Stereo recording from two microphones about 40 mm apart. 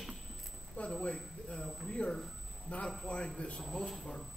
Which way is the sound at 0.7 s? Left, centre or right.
Left.